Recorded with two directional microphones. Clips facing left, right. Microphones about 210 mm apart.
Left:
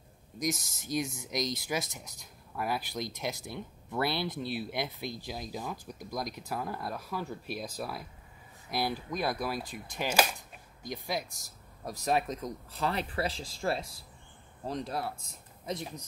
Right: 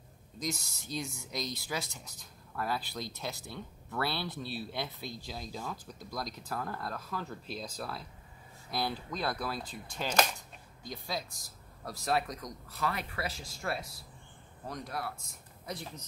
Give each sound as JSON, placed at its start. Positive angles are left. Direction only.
{"t": 0.4, "sound": "speech", "side_deg": 15}